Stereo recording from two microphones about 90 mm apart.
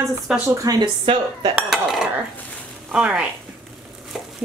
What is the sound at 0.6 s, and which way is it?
Speech, 45° right (ahead or behind).